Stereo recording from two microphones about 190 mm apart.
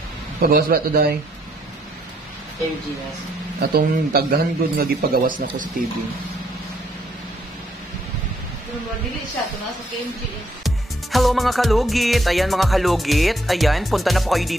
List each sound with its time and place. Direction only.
0.4 s a man's voice: 50° right (ahead or behind)
3.6 s a man's voice: 55° right (ahead or behind)
10.6 s music: centre (ahead or behind)